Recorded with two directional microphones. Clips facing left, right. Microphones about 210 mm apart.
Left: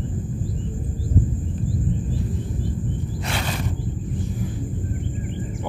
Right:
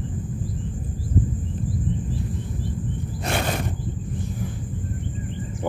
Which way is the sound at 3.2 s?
50° right (ahead or behind).